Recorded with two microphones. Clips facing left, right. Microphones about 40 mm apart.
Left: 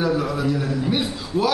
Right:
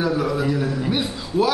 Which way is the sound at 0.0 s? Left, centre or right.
Centre.